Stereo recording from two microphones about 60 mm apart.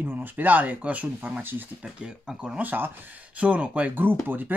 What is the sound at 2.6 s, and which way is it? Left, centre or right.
Speech, right.